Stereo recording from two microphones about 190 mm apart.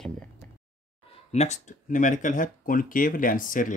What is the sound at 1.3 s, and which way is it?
Speech, 35° left (ahead or behind).